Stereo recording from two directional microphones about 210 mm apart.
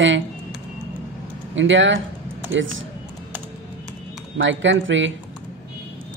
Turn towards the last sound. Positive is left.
turn(degrees=-60)  # may be behind; listen again after turning